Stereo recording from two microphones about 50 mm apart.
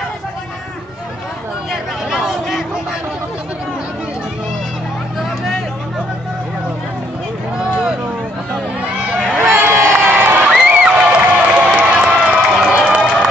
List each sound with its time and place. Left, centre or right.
1.7 s a sound: centre
7.5 s vehicle: centre
9.5 s crowd: right
10.4 s crowd: centre
10.8 s crowd: right
11.9 s run: right
12.3 s crowd: right
12.9 s a sound: centre